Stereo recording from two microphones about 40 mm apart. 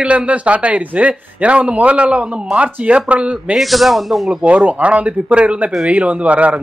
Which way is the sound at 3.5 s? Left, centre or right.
Centre.